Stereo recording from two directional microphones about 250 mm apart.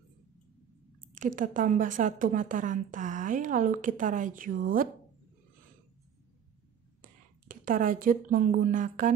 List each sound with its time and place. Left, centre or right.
1.1 s a woman's voice: right
7.0 s speech: right